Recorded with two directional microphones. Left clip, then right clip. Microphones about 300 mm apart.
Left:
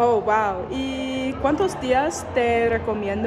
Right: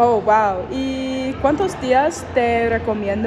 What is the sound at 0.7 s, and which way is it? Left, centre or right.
Speech, left.